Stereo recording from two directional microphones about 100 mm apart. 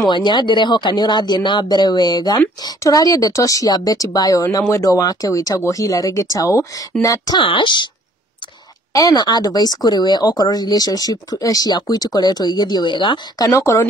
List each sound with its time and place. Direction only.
0.1 s a woman's voice: 50° left (ahead or behind)
7.4 s speech: 55° left (ahead or behind)
8.9 s a woman's voice: 45° left (ahead or behind)
13.4 s a woman's voice: 35° left (ahead or behind)